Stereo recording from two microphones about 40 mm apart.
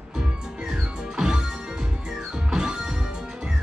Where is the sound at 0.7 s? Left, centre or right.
Right.